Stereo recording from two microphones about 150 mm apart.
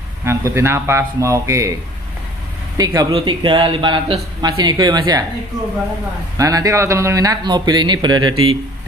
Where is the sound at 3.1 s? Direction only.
35° right (ahead or behind).